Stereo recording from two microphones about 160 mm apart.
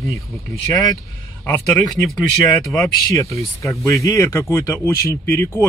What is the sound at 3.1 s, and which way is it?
Speech, 20° left (ahead or behind).